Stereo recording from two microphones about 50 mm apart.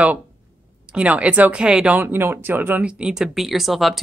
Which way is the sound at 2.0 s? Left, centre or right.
Right.